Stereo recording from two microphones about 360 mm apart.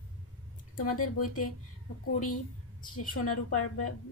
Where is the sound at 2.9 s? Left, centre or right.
Left.